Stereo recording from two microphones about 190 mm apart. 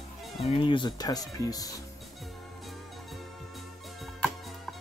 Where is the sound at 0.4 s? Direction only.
30° left (ahead or behind).